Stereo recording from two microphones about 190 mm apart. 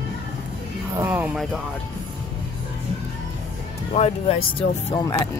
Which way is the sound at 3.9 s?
35° left (ahead or behind).